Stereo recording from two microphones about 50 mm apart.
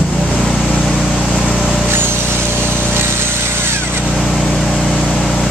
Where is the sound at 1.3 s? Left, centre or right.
Centre.